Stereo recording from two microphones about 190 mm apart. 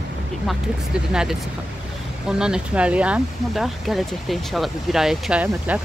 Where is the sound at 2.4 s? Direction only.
5° right (ahead or behind).